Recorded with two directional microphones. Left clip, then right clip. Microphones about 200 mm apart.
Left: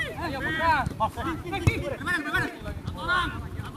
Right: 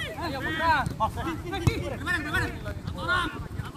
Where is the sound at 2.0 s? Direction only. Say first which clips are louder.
Even; 15° right (ahead or behind).